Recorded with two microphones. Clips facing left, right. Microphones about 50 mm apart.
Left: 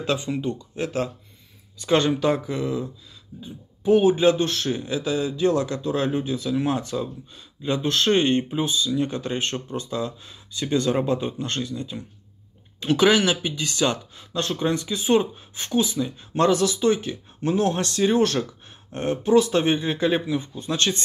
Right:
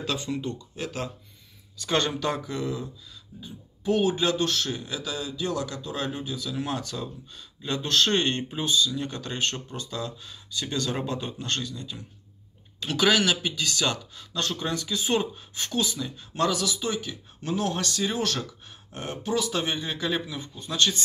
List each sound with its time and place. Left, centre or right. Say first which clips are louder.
0.0 s speech: left 5 dB; left